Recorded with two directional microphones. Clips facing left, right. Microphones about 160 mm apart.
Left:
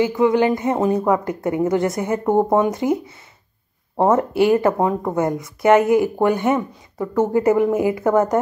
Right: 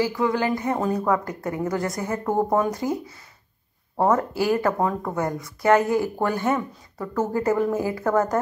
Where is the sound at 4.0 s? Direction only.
25° left (ahead or behind).